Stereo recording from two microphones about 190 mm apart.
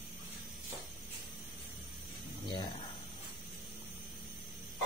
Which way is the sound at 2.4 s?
20° left (ahead or behind).